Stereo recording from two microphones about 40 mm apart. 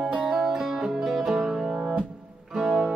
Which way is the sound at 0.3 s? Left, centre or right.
Centre.